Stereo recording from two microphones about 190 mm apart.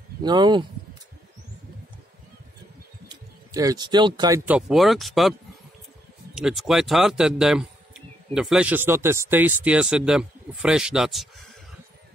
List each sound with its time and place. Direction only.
0.2 s speech: 25° right (ahead or behind)
3.1 s speech: 20° right (ahead or behind)
4.5 s speech: 5° right (ahead or behind)
6.3 s a man's voice: 5° right (ahead or behind)